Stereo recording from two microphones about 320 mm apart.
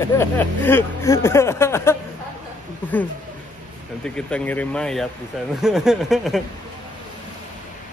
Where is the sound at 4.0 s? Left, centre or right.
Centre.